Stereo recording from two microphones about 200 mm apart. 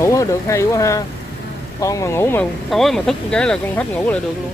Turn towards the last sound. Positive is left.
turn(degrees=5)  # may be behind; listen again after turning